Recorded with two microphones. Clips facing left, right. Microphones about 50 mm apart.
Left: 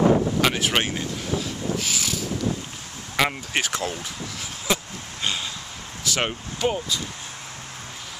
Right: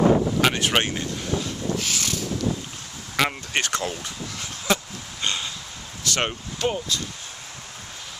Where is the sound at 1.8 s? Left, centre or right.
Centre.